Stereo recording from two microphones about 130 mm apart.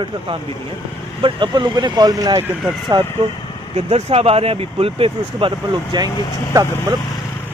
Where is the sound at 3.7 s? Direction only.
50° right (ahead or behind).